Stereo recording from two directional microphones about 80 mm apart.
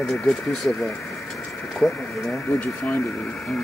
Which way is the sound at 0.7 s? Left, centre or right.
Left.